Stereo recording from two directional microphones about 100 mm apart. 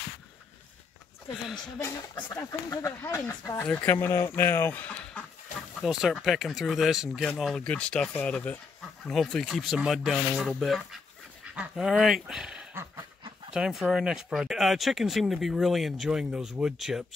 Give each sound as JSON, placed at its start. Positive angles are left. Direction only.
{"t": 1.3, "sound": "speech", "side_deg": 0}
{"t": 2.7, "sound": "speech", "side_deg": 30}
{"t": 5.8, "sound": "speech", "side_deg": -5}